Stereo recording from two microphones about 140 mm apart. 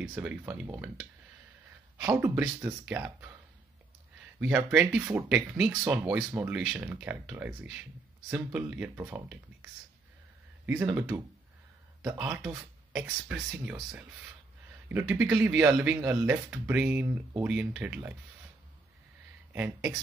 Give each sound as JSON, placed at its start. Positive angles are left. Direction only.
{"t": 0.0, "sound": "speech", "side_deg": -10}
{"t": 2.0, "sound": "speech", "side_deg": -15}
{"t": 4.4, "sound": "speech", "side_deg": -10}
{"t": 11.0, "sound": "speech", "side_deg": -10}
{"t": 16.4, "sound": "speech", "side_deg": -5}
{"t": 19.5, "sound": "speech", "side_deg": -15}